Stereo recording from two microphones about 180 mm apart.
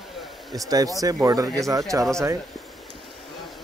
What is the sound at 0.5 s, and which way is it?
Speech, 20° right (ahead or behind).